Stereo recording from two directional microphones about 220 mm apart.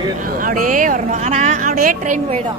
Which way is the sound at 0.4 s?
40° right (ahead or behind).